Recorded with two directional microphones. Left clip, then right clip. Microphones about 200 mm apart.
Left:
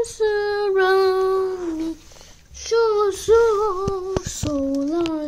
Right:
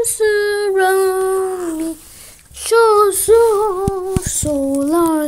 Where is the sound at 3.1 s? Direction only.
15° left (ahead or behind).